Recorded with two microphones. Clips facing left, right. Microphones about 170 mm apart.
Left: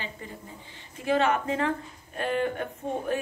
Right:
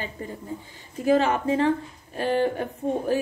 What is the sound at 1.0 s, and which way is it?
A woman's voice, 35° right (ahead or behind).